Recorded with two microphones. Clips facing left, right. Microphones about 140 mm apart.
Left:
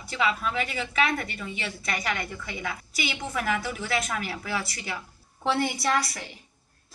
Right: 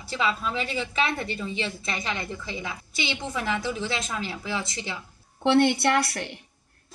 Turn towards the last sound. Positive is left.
turn(degrees=-65)  # may be behind; listen again after turning